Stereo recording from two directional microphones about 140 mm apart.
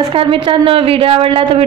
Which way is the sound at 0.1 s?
40° right (ahead or behind).